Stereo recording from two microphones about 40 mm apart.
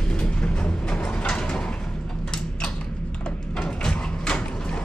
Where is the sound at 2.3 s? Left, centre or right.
Left.